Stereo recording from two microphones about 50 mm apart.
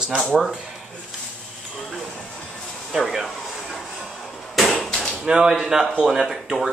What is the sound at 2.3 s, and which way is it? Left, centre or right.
Music, centre.